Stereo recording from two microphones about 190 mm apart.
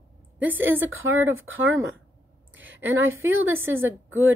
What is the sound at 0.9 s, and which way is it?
Speech, 90° right.